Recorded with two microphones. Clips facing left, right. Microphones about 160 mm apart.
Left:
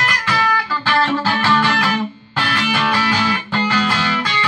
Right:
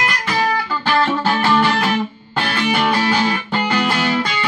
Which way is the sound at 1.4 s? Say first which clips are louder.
Right 1 dB; 25° right (ahead or behind).